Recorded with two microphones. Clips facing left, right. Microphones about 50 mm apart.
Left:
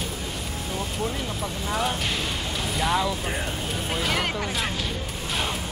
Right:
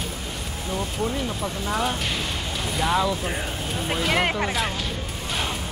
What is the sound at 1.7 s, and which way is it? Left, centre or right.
Speech, centre.